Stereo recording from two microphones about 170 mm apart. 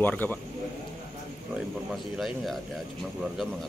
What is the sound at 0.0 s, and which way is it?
Speech, 10° left (ahead or behind).